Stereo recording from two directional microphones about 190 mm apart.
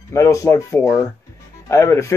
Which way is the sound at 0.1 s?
15° left (ahead or behind).